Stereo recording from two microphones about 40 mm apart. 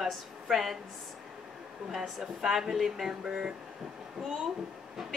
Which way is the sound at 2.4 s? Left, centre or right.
Centre.